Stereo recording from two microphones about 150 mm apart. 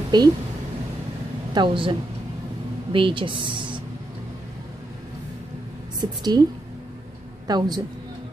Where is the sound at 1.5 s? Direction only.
35° right (ahead or behind).